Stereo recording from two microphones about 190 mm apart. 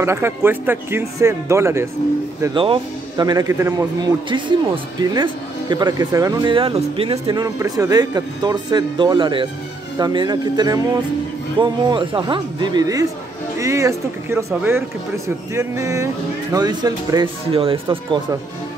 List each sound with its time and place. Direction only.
0.0 s speech: 15° right (ahead or behind)
2.4 s speech: 25° right (ahead or behind)